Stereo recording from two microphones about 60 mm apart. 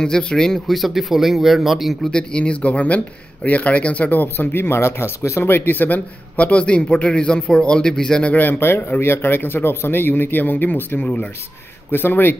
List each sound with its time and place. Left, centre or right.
0.0 s a man's voice: centre
2.0 s speech: centre
8.3 s speech: left
8.5 s a man's voice: left
11.0 s speech: left
11.9 s speech: left